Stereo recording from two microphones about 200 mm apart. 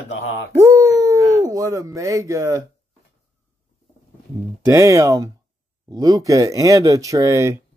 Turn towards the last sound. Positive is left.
turn(degrees=-15)  # may be behind; listen again after turning